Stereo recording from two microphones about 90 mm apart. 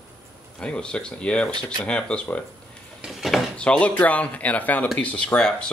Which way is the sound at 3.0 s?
Centre (ahead or behind).